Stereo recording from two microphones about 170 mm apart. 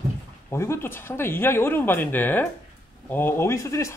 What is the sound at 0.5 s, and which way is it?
Speech, 15° left (ahead or behind).